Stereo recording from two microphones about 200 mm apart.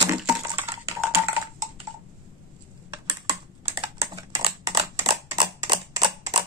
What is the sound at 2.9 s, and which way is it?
Typing, 15° right (ahead or behind).